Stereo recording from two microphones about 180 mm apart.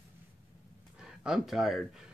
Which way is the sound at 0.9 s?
5° right (ahead or behind).